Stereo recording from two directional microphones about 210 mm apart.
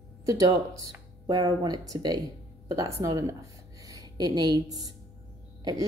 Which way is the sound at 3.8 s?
15° right (ahead or behind).